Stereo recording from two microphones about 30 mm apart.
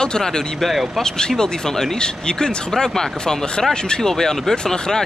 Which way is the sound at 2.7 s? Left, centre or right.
Centre.